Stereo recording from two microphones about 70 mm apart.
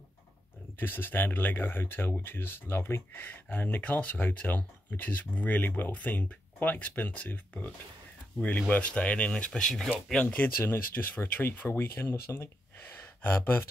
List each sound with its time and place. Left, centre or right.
0.7 s speech: left; by 10.1 s centre
10.1 s speech: left